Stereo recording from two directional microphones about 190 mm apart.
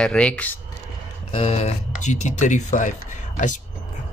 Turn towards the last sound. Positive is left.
turn(degrees=40)  # may be behind; listen again after turning